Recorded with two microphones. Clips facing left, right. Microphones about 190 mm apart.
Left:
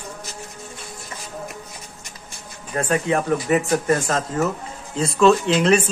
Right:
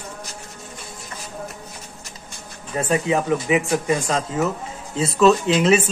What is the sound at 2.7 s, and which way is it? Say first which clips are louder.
Speech: even; 5° right (ahead or behind).